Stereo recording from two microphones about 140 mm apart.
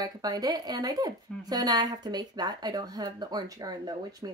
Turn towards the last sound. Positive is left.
turn(degrees=-30)  # may be behind; listen again after turning